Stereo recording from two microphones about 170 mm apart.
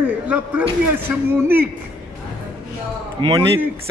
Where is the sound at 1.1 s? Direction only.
5° right (ahead or behind).